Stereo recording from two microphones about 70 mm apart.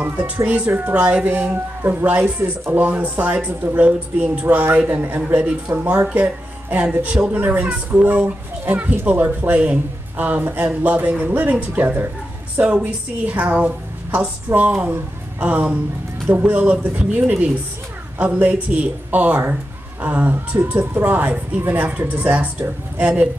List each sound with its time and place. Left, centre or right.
0.0 s speech: right
6.1 s speech: right